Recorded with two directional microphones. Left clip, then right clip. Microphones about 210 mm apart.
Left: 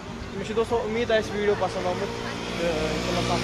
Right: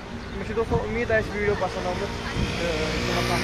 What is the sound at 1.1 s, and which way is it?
Speech, centre (ahead or behind).